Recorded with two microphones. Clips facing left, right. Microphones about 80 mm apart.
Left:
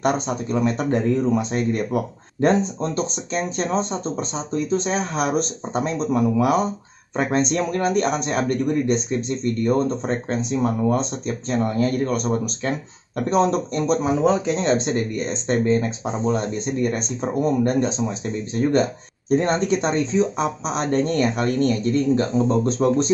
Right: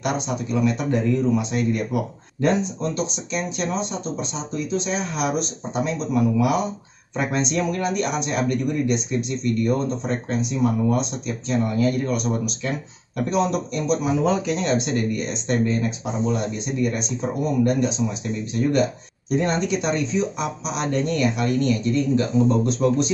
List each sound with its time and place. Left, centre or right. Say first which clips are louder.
0.0 s a man's voice: left 3 dB; left